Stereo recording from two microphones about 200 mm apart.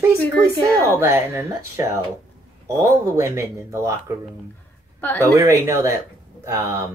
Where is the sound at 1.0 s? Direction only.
15° right (ahead or behind).